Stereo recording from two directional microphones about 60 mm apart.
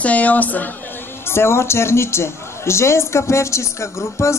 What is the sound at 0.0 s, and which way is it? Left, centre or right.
A man's voice, left.